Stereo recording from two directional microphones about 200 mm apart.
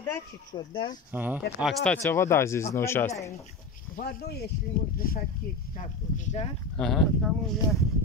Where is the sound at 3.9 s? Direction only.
55° left (ahead or behind); by 6.4 s 35° left (ahead or behind).